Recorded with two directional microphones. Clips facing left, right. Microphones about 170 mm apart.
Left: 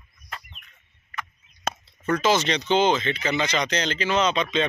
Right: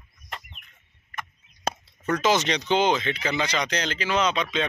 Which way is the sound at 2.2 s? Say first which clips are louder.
Even; 15° right (ahead or behind).